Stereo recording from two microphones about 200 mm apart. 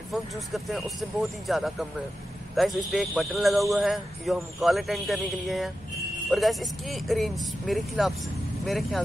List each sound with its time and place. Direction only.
0.1 s a man's voice: centre (ahead or behind)